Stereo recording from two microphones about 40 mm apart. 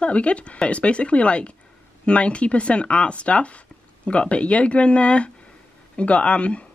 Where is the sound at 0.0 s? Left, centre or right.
Left.